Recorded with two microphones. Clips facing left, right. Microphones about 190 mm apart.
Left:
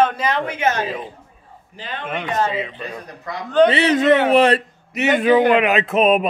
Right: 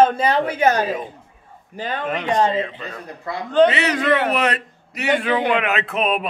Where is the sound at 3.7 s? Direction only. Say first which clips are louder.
Left 4 dB; 30° left (ahead or behind).